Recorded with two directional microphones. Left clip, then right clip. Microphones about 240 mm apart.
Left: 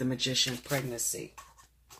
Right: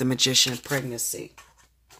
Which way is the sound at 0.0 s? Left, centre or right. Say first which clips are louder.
Right 8 dB; right.